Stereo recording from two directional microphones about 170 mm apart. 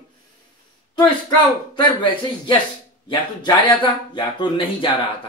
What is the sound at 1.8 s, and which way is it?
Speech, 25° left (ahead or behind).